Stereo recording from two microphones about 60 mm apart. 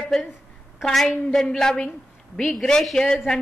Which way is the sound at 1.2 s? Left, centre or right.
Centre.